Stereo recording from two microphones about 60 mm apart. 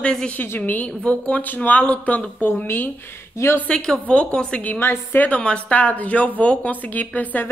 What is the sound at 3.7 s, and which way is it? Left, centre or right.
Speech, centre.